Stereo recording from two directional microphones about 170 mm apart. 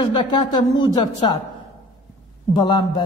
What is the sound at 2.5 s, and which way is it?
Speech, 25° left (ahead or behind).